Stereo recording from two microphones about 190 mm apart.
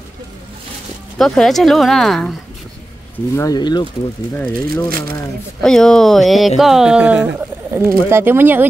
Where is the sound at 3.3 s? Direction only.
20° left (ahead or behind).